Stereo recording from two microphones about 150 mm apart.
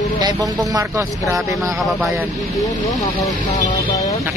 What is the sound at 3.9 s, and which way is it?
Vehicle, 20° left (ahead or behind).